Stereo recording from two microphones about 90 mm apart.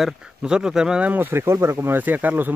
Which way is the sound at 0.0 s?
10° right (ahead or behind).